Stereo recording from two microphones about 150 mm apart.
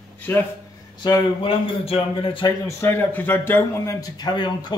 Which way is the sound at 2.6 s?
15° left (ahead or behind).